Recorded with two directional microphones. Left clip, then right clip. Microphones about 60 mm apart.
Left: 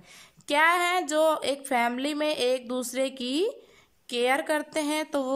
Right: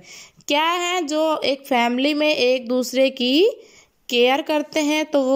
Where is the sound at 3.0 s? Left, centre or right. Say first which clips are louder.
Right 12 dB; right.